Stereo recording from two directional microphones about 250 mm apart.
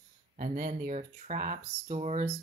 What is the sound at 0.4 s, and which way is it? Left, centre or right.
Speech, right.